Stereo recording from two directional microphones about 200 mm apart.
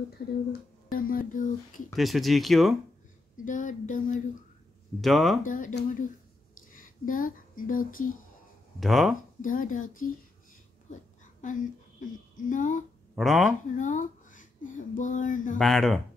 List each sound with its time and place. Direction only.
0.5 s music: 45° left (ahead or behind)
2.0 s speech: centre (ahead or behind)
3.4 s a sound: 40° left (ahead or behind)
5.0 s speech: centre (ahead or behind)
5.4 s speech: 40° left (ahead or behind)
8.7 s speech: centre (ahead or behind)
9.4 s speech: 40° left (ahead or behind)
11.4 s speech: 40° left (ahead or behind)
13.1 s speech: centre (ahead or behind)
13.7 s speech: 40° left (ahead or behind)
15.5 s speech: centre (ahead or behind)